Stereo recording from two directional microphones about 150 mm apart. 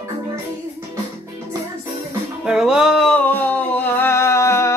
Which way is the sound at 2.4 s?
5° right (ahead or behind).